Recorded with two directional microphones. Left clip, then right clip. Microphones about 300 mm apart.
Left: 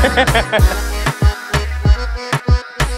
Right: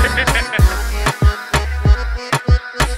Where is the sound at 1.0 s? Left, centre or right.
Centre.